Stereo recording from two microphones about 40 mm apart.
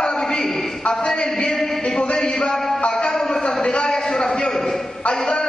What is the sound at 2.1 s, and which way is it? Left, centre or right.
Speech, centre.